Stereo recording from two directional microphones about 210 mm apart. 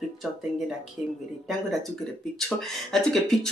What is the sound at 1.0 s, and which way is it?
Speech, 5° right (ahead or behind).